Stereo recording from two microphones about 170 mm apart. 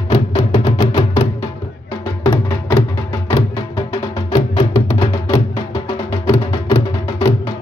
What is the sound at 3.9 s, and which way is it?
Music, 30° left (ahead or behind).